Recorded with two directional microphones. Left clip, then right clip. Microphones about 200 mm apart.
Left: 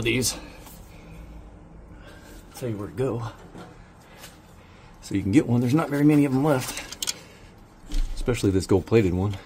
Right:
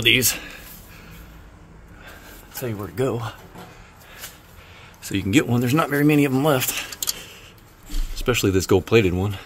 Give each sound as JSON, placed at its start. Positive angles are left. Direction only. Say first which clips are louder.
{"t": 0.0, "sound": "speech", "louder": "right 8 dB", "side_deg": -5}
{"t": 2.6, "sound": "speech", "louder": "right 3 dB", "side_deg": -20}
{"t": 5.0, "sound": "speech", "louder": "right 2 dB", "side_deg": 0}
{"t": 8.2, "sound": "speech", "louder": "right 4 dB", "side_deg": 0}